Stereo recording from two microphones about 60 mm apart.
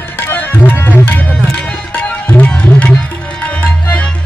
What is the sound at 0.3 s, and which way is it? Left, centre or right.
Music, left.